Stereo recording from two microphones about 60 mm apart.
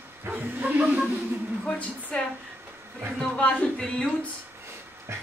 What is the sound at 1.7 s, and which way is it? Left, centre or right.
Speech, left.